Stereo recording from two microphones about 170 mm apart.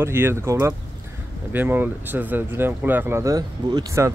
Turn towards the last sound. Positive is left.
turn(degrees=-20)  # may be behind; listen again after turning